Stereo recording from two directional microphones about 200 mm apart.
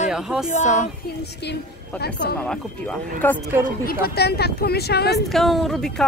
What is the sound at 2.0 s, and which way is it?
Speech, 55° left (ahead or behind).